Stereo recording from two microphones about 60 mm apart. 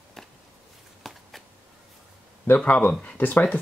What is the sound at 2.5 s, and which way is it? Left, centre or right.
Speech, left.